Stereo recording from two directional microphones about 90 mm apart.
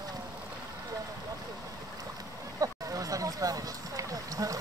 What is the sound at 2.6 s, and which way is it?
Run, 40° right (ahead or behind).